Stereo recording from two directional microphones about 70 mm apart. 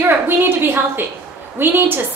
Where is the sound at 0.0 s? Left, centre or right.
Right.